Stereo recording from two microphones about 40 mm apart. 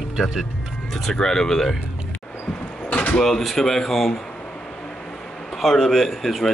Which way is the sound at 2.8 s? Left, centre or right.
Left.